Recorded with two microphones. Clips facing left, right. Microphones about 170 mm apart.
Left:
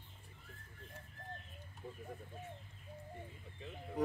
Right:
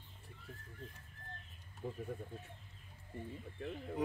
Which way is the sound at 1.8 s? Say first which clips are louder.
Right 6 dB; 70° right (ahead or behind).